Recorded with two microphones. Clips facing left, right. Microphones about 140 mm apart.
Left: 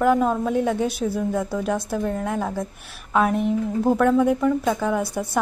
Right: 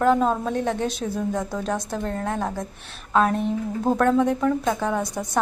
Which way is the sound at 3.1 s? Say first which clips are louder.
Even; 10° left (ahead or behind).